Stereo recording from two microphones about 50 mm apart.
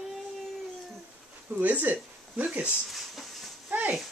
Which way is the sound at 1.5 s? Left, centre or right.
Right.